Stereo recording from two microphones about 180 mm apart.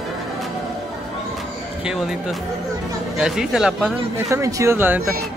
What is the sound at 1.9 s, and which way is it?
Speech, 5° right (ahead or behind).